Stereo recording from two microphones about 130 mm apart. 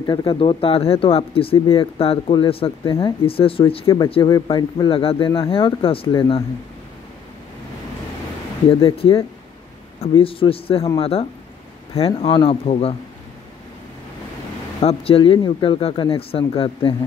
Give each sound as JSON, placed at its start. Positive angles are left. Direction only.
{"t": 0.0, "sound": "speech", "side_deg": 40}
{"t": 3.8, "sound": "a man's voice", "side_deg": 30}
{"t": 8.6, "sound": "speech", "side_deg": 45}
{"t": 14.8, "sound": "speech", "side_deg": 50}